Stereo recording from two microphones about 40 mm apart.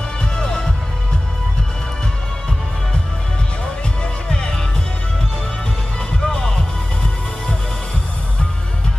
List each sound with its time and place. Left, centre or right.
0.2 s music: centre
4.0 s music: centre
6.2 s music: centre